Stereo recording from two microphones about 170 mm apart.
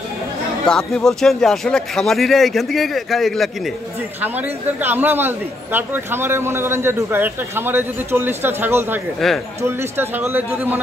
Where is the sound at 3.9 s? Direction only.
10° right (ahead or behind).